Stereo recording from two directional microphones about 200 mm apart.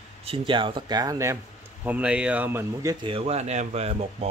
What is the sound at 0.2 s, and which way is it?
Speech, 25° right (ahead or behind).